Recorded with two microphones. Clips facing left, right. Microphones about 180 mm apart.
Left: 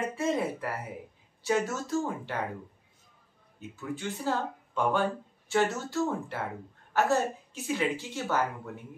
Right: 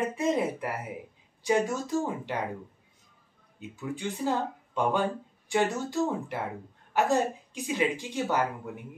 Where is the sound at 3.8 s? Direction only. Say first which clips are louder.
Right 3 dB; 15° right (ahead or behind).